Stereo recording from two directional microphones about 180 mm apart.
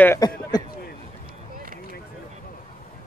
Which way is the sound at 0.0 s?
15° left (ahead or behind).